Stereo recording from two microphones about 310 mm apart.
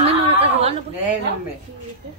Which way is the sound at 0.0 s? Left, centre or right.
Centre.